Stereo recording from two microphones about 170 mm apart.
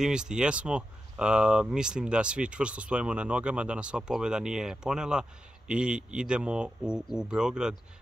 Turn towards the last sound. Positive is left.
turn(degrees=-5)  # may be behind; listen again after turning